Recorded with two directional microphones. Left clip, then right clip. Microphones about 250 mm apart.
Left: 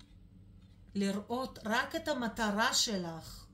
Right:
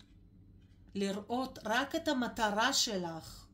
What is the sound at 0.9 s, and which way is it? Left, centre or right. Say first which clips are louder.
A woman's voice: even; right.